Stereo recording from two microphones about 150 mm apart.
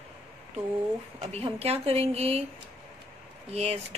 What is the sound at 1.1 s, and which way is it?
A woman's voice, 45° right (ahead or behind).